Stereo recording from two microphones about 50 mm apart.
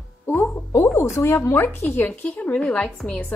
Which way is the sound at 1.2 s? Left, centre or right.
Left.